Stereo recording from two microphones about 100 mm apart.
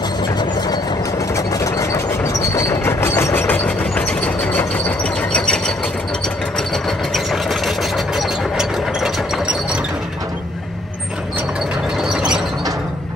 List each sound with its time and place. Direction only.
0.2 s vehicle: 45° left (ahead or behind)
1.3 s train: 30° left (ahead or behind); by 5.6 s 10° left (ahead or behind)
6.7 s vehicle: centre (ahead or behind)
12.0 s mechanisms: 5° right (ahead or behind)